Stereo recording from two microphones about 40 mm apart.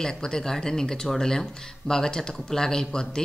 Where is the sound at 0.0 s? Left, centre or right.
Centre.